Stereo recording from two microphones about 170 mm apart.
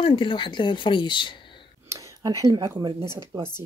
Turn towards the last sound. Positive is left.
turn(degrees=-20)  # may be behind; listen again after turning